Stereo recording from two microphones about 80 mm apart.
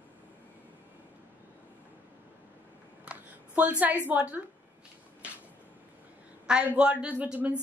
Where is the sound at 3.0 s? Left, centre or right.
Centre.